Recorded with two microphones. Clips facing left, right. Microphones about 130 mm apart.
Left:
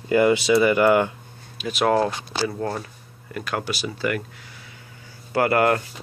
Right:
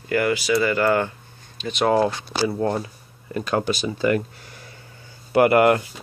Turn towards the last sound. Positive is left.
turn(degrees=-20)  # may be behind; listen again after turning